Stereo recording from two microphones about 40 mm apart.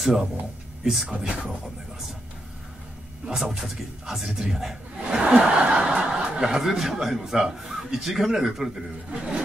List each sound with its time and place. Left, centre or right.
0.0 s speech: centre
1.0 s speech: right
3.3 s a man's voice: centre
4.9 s a man's voice: right
9.1 s speech: right